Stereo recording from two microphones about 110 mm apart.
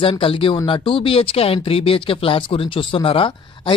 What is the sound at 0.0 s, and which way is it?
Speech, 55° left (ahead or behind).